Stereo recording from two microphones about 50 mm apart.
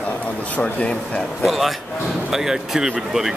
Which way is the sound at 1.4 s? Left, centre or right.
Centre.